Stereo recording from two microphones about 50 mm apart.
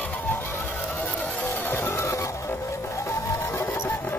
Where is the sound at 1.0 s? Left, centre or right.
Left.